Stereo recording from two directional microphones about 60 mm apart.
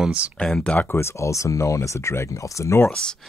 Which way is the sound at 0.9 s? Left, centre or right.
Left.